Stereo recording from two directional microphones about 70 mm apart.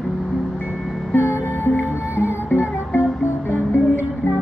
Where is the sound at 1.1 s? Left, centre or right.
Left.